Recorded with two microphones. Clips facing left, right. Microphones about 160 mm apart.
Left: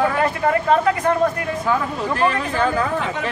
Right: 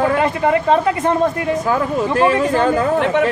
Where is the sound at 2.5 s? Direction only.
40° right (ahead or behind).